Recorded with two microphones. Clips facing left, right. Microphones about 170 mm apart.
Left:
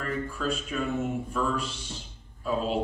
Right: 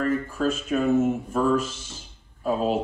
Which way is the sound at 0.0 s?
45° right (ahead or behind).